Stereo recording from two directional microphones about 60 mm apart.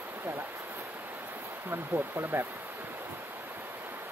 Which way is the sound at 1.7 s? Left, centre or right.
Right.